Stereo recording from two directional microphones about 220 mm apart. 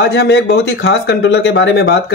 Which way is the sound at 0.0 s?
50° left (ahead or behind).